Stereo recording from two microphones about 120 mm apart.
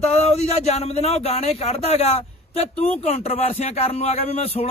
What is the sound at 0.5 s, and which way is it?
Speech, 60° left (ahead or behind).